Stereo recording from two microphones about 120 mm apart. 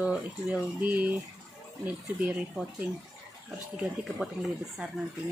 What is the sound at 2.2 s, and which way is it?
Speech, 5° right (ahead or behind).